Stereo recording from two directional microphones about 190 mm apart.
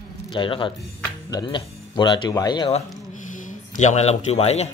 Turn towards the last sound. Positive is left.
turn(degrees=35)  # may be behind; listen again after turning